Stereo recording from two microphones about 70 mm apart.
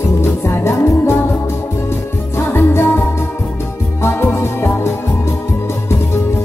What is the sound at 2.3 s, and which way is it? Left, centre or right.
Music, left.